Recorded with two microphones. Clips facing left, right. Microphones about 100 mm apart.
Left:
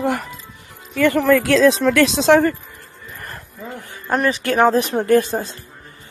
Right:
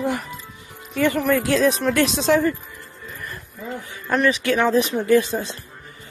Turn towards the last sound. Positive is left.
turn(degrees=45)  # may be behind; listen again after turning